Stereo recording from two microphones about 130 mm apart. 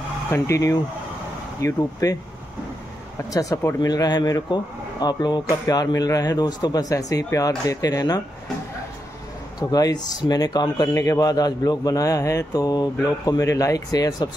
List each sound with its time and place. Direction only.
0.3 s speech: 20° left (ahead or behind)
3.3 s speech: 25° left (ahead or behind)
9.6 s speech: 30° left (ahead or behind)